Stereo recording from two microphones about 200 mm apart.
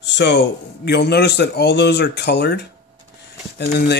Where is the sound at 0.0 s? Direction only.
60° left (ahead or behind).